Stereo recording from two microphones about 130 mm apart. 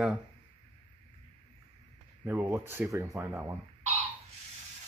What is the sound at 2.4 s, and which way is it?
Speech, 20° right (ahead or behind).